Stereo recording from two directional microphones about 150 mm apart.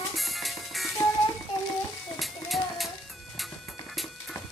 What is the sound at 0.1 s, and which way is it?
Music, centre (ahead or behind).